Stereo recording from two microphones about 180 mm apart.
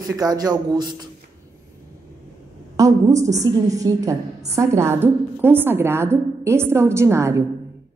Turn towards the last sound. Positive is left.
turn(degrees=-15)  # may be behind; listen again after turning